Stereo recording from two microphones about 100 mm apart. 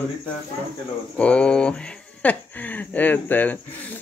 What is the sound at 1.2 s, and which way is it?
Speech, 10° left (ahead or behind).